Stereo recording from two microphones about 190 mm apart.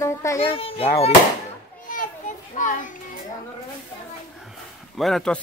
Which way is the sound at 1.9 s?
45° left (ahead or behind).